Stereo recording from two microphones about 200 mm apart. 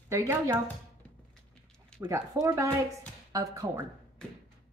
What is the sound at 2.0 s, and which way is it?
Speech, 15° right (ahead or behind).